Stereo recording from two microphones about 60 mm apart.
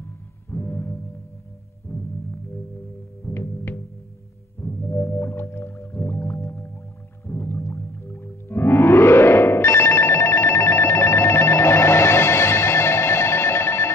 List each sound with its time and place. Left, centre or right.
0.0 s music: left
3.3 s music: left
7.2 s whale vocalization: left